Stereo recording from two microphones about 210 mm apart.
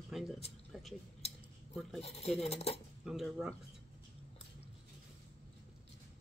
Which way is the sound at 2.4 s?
30° left (ahead or behind).